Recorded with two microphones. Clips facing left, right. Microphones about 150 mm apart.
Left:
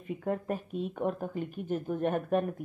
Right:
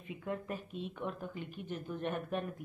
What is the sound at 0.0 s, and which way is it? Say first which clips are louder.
A woman's voice: left 7 dB; 50° left (ahead or behind).